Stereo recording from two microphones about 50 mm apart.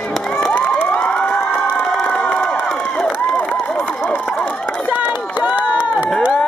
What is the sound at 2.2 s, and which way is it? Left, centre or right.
Crowd, left.